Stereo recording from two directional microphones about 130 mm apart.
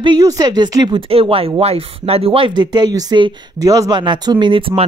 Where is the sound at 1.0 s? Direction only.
45° right (ahead or behind).